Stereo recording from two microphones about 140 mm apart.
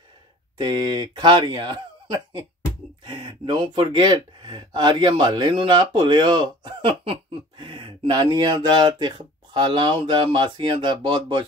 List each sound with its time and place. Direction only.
0.6 s speech: 30° right (ahead or behind)